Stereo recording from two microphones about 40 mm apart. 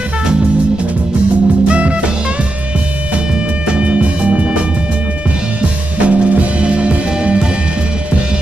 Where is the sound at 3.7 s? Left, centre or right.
Right.